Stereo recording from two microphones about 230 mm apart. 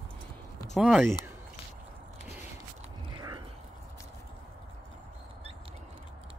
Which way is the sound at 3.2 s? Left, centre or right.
Centre.